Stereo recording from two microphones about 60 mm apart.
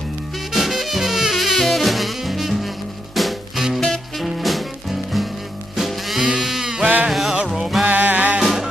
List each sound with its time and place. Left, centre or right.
0.5 s music: centre
6.2 s sheep: centre
7.1 s music: centre
7.8 s music: right
8.4 s music: centre